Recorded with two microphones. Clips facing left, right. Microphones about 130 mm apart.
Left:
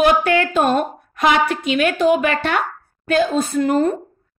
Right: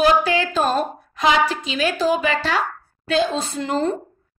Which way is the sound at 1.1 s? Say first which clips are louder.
Left 2 dB; 55° left (ahead or behind).